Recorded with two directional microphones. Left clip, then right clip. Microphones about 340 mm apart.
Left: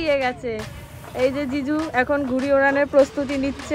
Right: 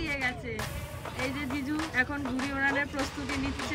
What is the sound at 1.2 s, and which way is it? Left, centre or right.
Speech, centre.